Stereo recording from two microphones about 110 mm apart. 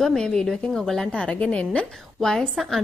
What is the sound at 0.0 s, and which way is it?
A woman's voice, 5° left (ahead or behind).